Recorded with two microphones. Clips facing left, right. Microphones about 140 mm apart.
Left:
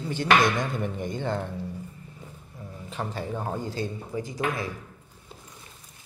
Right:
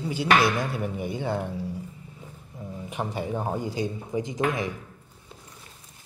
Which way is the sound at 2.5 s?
20° right (ahead or behind).